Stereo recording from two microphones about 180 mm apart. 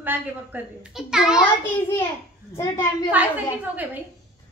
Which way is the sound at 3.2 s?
10° right (ahead or behind).